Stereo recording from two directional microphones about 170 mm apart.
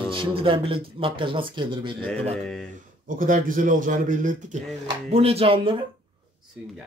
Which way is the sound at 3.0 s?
55° right (ahead or behind).